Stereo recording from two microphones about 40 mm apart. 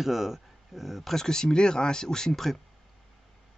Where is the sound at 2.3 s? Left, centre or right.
Centre.